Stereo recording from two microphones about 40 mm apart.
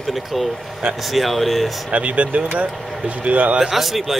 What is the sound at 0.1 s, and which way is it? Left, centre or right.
Speech, centre.